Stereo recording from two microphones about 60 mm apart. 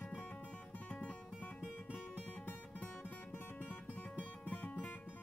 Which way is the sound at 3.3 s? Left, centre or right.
Left.